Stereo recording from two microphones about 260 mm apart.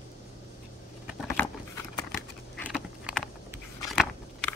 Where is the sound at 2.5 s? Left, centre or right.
Centre.